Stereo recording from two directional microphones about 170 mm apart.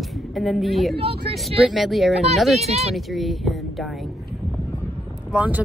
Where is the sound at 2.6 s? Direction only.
40° right (ahead or behind).